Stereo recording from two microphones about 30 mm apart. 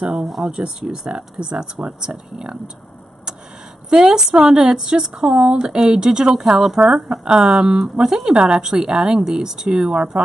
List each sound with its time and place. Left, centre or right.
0.4 s speech: right
3.9 s speech: right
5.7 s speech: right